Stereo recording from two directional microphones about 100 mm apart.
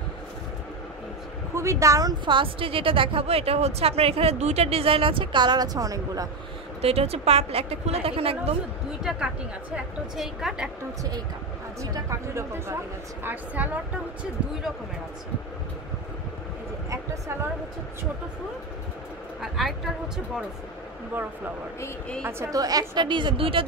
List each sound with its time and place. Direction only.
1.5 s speech: 30° right (ahead or behind)
2.2 s a woman's voice: 60° right (ahead or behind); by 6.2 s 35° right (ahead or behind)
6.8 s a woman's voice: 90° right
9.1 s a woman's voice: 5° right (ahead or behind)
11.8 s speech: 30° right (ahead or behind)
19.4 s a woman's voice: centre (ahead or behind)
22.5 s a woman's voice: 40° right (ahead or behind); by 23.6 s 60° right (ahead or behind)